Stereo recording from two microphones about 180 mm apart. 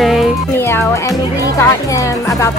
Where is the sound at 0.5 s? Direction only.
15° left (ahead or behind).